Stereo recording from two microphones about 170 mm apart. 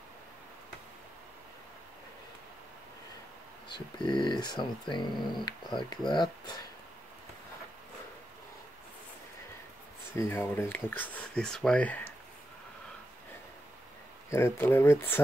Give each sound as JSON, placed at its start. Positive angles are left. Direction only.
{"t": 3.6, "sound": "speech", "side_deg": 25}
{"t": 10.1, "sound": "speech", "side_deg": 15}
{"t": 14.3, "sound": "speech", "side_deg": 15}